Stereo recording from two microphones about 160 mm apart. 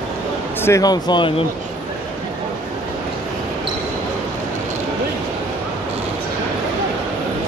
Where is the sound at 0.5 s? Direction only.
15° left (ahead or behind); by 1.4 s 30° left (ahead or behind).